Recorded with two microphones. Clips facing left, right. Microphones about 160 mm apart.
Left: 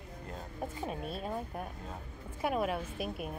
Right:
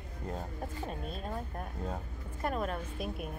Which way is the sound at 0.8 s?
5° left (ahead or behind).